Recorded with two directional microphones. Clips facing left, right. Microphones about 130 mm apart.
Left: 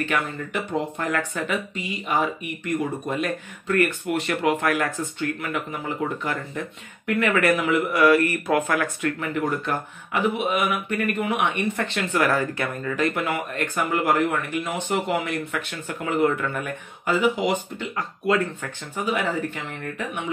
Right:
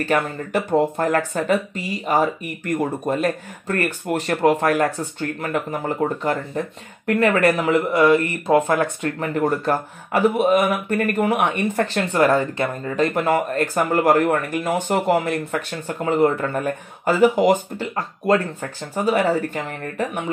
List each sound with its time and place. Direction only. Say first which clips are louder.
0.0 s speech: right 5 dB; 40° right (ahead or behind)